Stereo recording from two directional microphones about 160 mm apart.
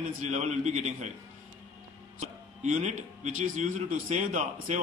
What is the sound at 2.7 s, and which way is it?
A man's voice, 50° right (ahead or behind).